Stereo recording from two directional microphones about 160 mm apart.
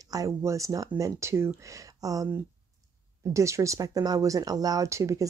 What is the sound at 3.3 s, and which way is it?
Speech, 20° right (ahead or behind).